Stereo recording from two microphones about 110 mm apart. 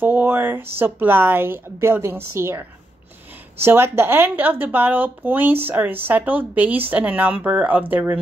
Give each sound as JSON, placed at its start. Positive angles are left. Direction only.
{"t": 0.0, "sound": "speech", "side_deg": -20}